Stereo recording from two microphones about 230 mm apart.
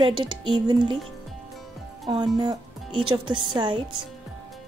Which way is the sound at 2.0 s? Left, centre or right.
Centre.